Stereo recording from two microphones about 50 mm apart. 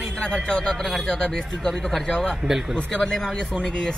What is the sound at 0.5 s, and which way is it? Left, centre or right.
Speech, centre.